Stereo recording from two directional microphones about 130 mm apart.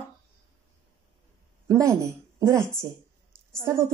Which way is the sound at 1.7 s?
25° right (ahead or behind).